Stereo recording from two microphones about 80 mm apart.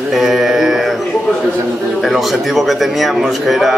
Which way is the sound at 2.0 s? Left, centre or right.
Centre.